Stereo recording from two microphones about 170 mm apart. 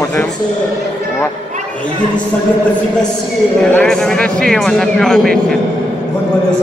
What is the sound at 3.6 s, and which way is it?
A man's voice, 5° left (ahead or behind).